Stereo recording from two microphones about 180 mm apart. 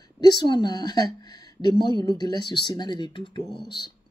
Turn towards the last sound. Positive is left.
turn(degrees=25)  # may be behind; listen again after turning